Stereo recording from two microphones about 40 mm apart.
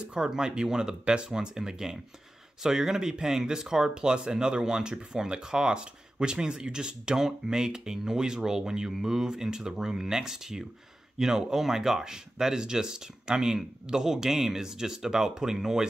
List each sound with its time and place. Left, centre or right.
0.0 s speech: centre